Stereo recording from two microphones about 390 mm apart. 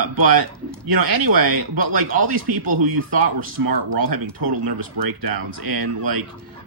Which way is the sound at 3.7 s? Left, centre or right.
Right.